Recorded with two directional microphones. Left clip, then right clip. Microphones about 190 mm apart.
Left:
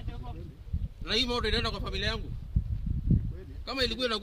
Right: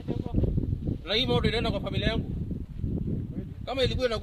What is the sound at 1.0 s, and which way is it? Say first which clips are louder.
Speech: right 2 dB; 20° left (ahead or behind).